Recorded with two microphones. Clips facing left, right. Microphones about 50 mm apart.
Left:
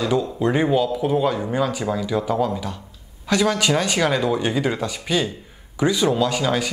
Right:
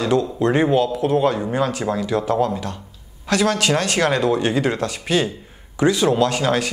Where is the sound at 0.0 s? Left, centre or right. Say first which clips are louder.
Right 2 dB; centre.